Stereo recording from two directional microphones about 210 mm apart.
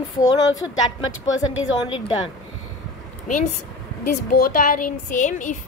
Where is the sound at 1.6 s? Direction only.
25° left (ahead or behind).